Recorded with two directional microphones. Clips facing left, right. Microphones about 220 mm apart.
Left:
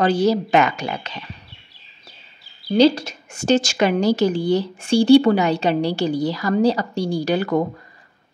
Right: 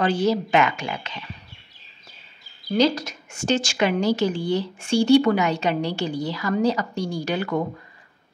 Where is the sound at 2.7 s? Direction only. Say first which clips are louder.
Left 5 dB; 30° left (ahead or behind).